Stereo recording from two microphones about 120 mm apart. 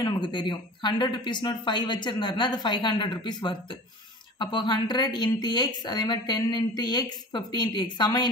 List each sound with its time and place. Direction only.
0.0 s speech: 40° left (ahead or behind)